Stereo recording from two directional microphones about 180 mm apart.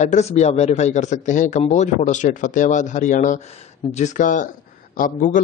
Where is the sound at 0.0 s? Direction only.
40° left (ahead or behind).